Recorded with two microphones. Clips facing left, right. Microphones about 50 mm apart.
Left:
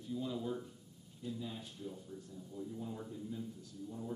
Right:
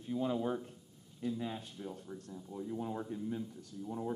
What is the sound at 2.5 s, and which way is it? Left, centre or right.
Speech, right.